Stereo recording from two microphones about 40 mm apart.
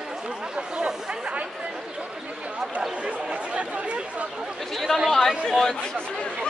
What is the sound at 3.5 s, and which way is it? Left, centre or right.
Speech, right.